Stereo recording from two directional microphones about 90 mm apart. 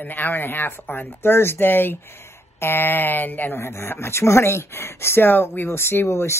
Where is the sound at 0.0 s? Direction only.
20° left (ahead or behind).